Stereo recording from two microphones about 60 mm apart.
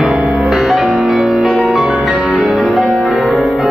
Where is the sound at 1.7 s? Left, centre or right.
Centre.